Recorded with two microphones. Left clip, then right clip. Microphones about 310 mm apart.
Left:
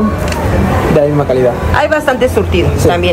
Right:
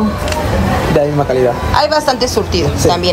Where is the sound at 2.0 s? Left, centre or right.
Centre.